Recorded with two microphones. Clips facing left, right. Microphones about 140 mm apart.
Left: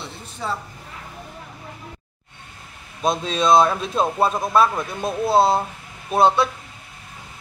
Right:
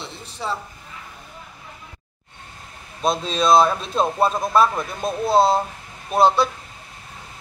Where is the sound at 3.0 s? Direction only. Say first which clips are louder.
Even; centre (ahead or behind).